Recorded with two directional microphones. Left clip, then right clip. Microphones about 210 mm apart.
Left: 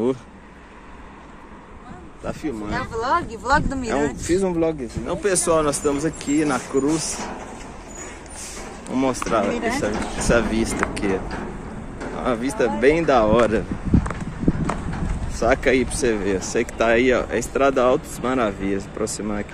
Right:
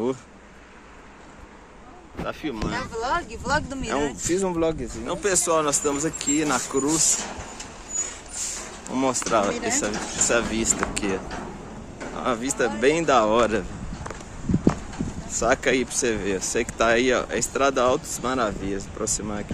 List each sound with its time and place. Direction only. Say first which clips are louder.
2.2 s speech: left 2 dB; 10° right (ahead or behind)
4.0 s speech: left 3 dB; 10° right (ahead or behind)
6.7 s speech: left 3 dB; 20° right (ahead or behind)
8.9 s speech: left 1 dB; 15° right (ahead or behind)
10.2 s speech: left 3 dB; 5° right (ahead or behind)
12.2 s speech: left 3 dB; 10° right (ahead or behind)
15.3 s speech: left 3 dB; 10° right (ahead or behind)